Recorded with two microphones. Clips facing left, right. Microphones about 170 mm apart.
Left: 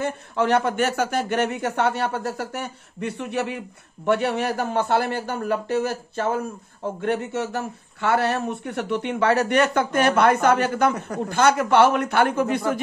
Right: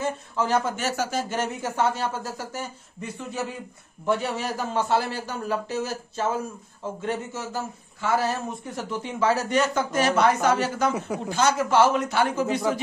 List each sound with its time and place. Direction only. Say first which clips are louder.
0.0 s speech: left 3 dB; 65° left (ahead or behind)